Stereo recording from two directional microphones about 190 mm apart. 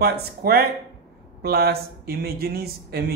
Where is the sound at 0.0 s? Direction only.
55° right (ahead or behind).